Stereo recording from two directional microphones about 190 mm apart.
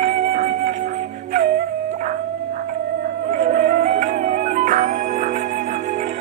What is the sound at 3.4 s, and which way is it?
Music, 40° right (ahead or behind).